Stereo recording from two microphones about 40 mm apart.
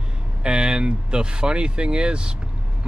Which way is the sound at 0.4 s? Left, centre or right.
Right.